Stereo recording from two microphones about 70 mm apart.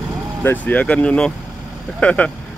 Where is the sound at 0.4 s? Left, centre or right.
Left.